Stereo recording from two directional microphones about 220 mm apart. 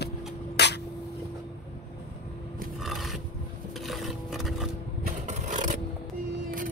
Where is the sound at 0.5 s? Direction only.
50° left (ahead or behind).